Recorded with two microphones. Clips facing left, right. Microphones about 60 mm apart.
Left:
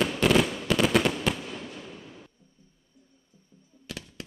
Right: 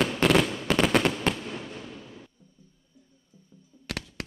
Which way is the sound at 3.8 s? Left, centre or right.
Right.